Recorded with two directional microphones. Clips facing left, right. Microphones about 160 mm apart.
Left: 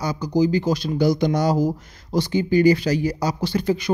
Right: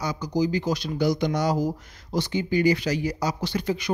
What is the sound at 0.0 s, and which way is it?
Speech, 30° left (ahead or behind).